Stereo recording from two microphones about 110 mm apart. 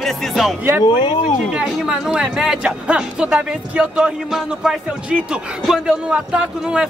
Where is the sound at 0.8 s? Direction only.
50° left (ahead or behind).